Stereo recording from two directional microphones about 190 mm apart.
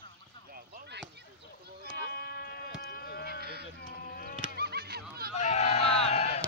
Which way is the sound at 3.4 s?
55° right (ahead or behind).